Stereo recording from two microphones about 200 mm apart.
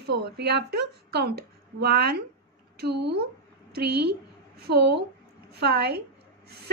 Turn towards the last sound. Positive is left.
turn(degrees=-55)  # may be behind; listen again after turning